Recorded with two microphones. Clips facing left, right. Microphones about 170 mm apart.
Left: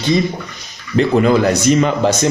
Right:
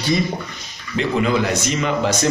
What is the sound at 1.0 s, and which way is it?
A man's voice, 45° left (ahead or behind).